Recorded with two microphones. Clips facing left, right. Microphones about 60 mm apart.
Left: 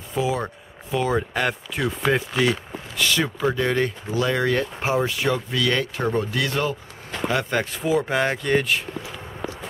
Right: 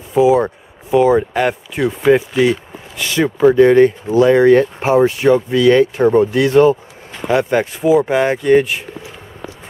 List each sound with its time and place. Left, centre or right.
0.1 s speech: centre
2.5 s a sound: centre
3.3 s speech: right